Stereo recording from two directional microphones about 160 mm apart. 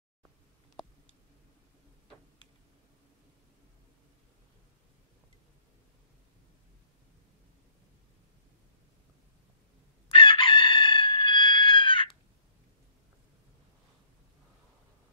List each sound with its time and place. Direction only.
10.1 s chicken: 30° left (ahead or behind)